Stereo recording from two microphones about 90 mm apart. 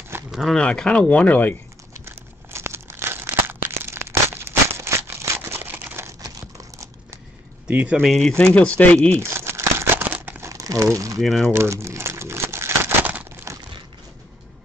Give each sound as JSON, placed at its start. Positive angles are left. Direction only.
{"t": 0.3, "sound": "speech", "side_deg": 0}
{"t": 0.6, "sound": "speech", "side_deg": 10}
{"t": 2.0, "sound": "crumpling", "side_deg": -30}
{"t": 6.2, "sound": "crumpling", "side_deg": -35}
{"t": 7.6, "sound": "speech", "side_deg": -15}
{"t": 8.0, "sound": "speech", "side_deg": 5}
{"t": 9.2, "sound": "crumpling", "side_deg": -30}
{"t": 10.5, "sound": "crumpling", "side_deg": -40}
{"t": 11.1, "sound": "speech", "side_deg": 0}
{"t": 11.5, "sound": "crumpling", "side_deg": -30}